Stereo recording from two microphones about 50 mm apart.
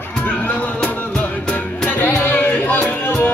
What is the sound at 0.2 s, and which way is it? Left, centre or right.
Music, left.